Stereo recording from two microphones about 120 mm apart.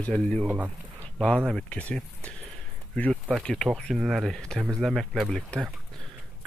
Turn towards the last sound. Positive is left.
turn(degrees=5)  # may be behind; listen again after turning